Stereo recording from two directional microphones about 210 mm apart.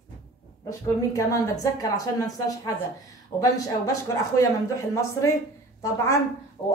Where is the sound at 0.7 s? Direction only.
15° left (ahead or behind).